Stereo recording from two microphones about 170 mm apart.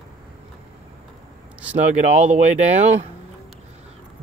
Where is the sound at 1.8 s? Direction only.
45° right (ahead or behind).